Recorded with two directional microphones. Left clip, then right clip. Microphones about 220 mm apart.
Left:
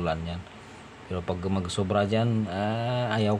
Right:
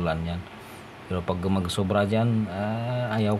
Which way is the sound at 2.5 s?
15° left (ahead or behind).